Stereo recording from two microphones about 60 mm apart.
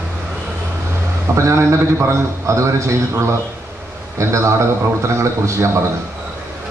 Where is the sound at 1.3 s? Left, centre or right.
Right.